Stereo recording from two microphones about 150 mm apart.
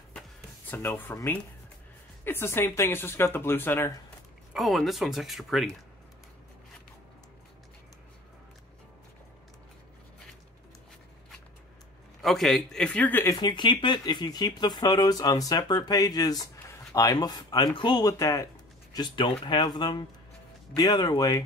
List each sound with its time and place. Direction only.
0.7 s speech: 15° left (ahead or behind)
4.6 s speech: centre (ahead or behind)
12.2 s speech: centre (ahead or behind)
13.3 s speech: 30° left (ahead or behind)